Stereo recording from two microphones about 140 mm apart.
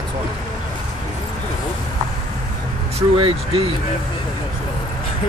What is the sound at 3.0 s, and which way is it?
Speech, 40° right (ahead or behind).